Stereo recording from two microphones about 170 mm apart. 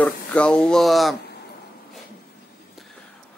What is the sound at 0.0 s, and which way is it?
Speech, 5° left (ahead or behind).